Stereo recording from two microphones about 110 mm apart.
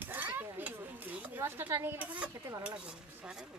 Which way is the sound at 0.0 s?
15° right (ahead or behind).